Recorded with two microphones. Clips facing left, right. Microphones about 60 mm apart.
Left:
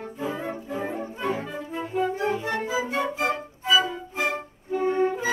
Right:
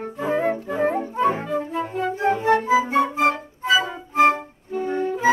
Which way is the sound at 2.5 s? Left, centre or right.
Right.